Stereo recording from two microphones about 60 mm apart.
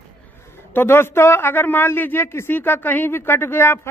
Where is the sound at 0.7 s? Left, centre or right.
Left.